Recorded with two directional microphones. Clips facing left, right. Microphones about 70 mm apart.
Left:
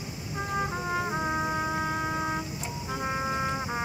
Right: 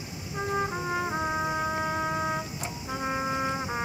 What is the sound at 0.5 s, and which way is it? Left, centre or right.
Music, centre.